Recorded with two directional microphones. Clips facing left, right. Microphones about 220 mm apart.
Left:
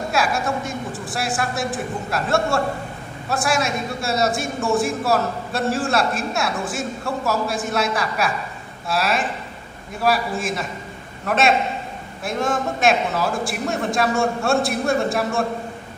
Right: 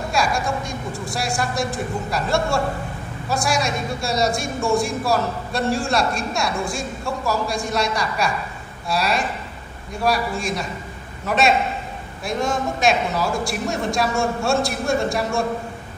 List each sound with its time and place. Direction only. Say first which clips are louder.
0.1 s a man's voice: even; 5° left (ahead or behind)